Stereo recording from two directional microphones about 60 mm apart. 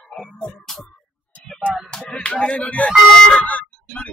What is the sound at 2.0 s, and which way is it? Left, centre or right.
Speech, left.